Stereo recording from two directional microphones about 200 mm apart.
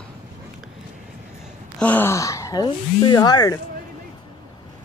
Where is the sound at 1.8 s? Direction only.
10° left (ahead or behind).